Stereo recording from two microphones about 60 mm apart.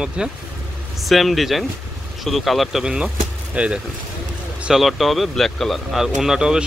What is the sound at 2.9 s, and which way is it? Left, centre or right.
Speech, centre.